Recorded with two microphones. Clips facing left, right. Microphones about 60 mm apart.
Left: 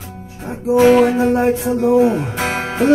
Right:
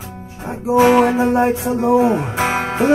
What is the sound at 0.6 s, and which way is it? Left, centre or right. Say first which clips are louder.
Music: left 1 dB; centre.